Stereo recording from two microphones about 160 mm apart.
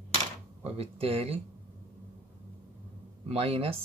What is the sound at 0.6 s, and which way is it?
Speech, 40° right (ahead or behind).